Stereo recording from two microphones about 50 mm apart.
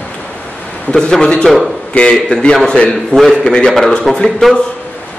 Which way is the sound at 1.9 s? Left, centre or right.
Left.